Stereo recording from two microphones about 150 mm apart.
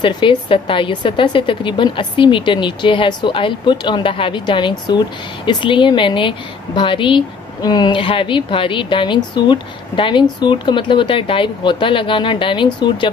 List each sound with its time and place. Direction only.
0.0 s a woman's voice: 30° left (ahead or behind)